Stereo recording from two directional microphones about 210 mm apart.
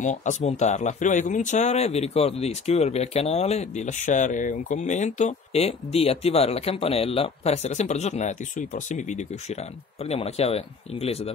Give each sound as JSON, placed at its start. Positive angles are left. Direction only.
{"t": 0.0, "sound": "speech", "side_deg": 35}